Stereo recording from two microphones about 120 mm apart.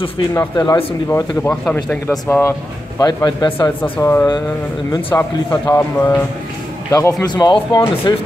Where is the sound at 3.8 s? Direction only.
20° left (ahead or behind).